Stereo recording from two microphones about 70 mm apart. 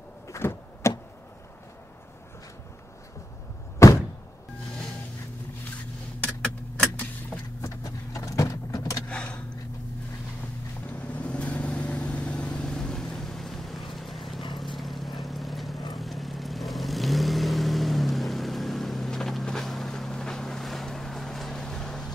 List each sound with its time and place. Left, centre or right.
0.3 s power windows: left
3.8 s door: left
6.2 s keys jangling: centre
7.8 s vehicle: left
9.1 s a sound: centre
10.9 s vehicle: centre